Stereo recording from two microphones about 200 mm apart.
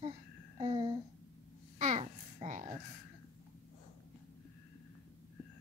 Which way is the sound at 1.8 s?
35° right (ahead or behind).